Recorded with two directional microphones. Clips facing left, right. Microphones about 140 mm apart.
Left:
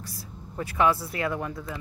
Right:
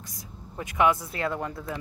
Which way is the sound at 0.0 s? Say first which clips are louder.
Left 3 dB; 20° right (ahead or behind).